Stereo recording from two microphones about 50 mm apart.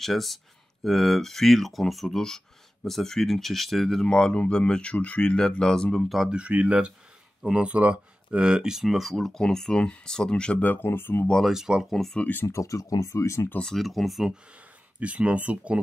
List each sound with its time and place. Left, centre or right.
0.0 s speech: centre
4.0 s speech: centre
6.0 s speech: centre
6.3 s speech: right
8.8 s speech: centre
10.6 s speech: left
10.9 s speech: left
11.4 s speech: centre
11.9 s speech: centre
12.4 s speech: left
13.7 s speech: centre
15.0 s speech: right